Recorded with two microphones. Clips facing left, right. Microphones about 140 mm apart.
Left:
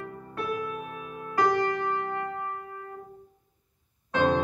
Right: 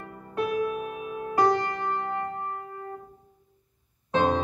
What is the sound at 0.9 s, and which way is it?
Music, 20° right (ahead or behind).